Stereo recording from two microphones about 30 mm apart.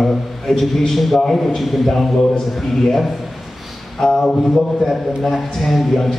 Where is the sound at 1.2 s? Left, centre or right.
Left.